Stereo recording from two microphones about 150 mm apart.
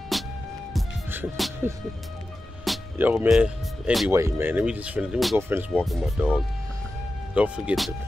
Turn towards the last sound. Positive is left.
turn(degrees=-5)  # may be behind; listen again after turning